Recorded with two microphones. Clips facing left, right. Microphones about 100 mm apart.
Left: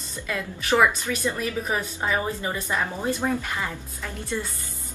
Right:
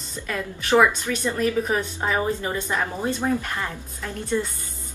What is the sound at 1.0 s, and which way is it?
Speech, 5° left (ahead or behind).